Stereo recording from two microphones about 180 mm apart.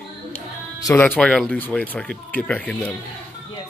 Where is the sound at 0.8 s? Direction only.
10° left (ahead or behind).